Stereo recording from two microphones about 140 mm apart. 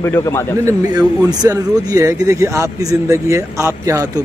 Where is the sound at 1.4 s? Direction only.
25° right (ahead or behind).